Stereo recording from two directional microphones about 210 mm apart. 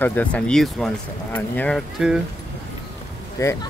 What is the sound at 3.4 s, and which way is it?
Speech, 15° left (ahead or behind).